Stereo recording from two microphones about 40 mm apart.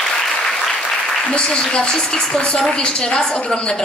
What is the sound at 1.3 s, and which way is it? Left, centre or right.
A woman's voice, left.